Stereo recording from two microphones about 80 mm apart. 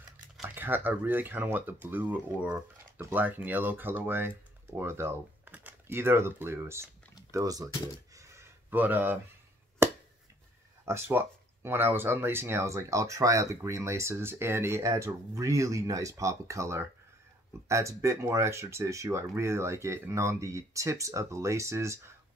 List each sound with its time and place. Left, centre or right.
0.6 s speech: right
7.2 s speech: right
8.1 s a sound: right
8.6 s speech: right
9.8 s finger snapping: right
10.9 s speech: right